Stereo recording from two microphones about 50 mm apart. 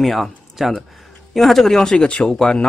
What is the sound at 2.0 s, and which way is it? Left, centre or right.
Speech, left.